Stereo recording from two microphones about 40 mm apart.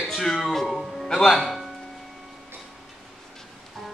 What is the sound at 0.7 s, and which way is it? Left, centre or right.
Music, centre.